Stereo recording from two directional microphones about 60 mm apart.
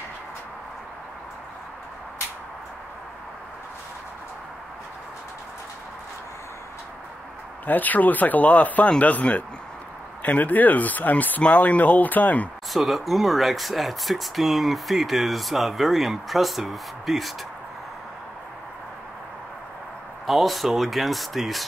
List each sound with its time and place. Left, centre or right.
7.6 s speech: left
12.7 s speech: centre
20.2 s speech: centre